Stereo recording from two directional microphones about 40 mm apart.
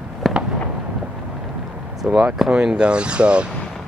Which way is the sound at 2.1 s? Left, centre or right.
Centre.